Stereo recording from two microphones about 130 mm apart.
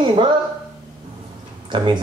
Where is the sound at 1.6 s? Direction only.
35° right (ahead or behind).